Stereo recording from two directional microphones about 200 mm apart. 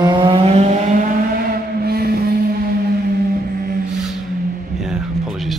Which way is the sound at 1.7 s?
50° right (ahead or behind).